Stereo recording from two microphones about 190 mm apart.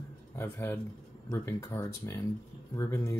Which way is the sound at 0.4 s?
10° left (ahead or behind).